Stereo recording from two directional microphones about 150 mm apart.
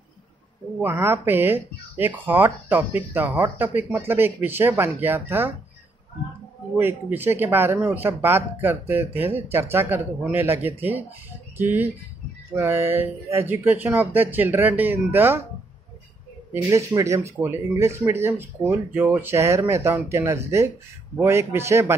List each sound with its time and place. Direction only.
0.7 s speech: 15° right (ahead or behind)
6.8 s speech: 15° right (ahead or behind)
16.7 s speech: 20° right (ahead or behind)